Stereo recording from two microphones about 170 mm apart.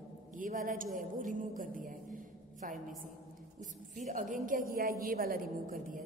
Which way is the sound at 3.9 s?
50° right (ahead or behind).